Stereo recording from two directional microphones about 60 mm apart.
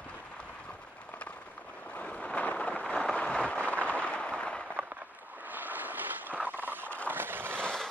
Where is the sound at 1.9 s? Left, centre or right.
Left.